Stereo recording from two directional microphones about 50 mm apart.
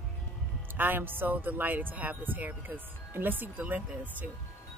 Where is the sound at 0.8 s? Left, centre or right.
Right.